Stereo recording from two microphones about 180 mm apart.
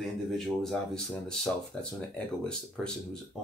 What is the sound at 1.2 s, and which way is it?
Speech, 5° left (ahead or behind).